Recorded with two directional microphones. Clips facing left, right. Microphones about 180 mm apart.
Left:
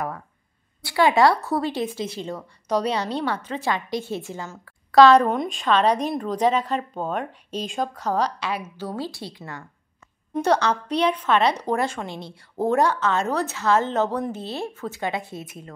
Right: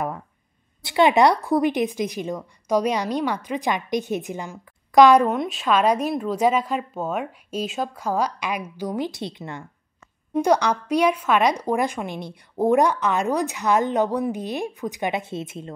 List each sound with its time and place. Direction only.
0.8 s a woman's voice: 20° right (ahead or behind)